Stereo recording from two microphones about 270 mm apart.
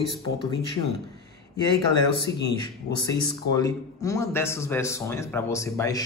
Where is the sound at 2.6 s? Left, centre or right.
Centre.